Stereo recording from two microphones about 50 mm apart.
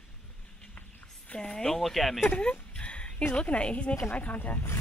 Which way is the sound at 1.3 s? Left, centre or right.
Centre.